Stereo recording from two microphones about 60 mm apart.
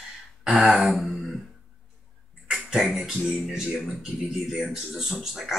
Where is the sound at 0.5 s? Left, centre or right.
Centre.